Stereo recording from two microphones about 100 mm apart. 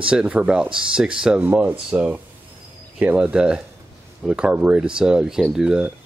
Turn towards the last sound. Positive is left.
turn(degrees=-10)  # may be behind; listen again after turning